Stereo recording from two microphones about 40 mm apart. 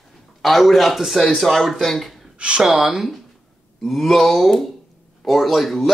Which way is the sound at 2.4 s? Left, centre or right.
Right.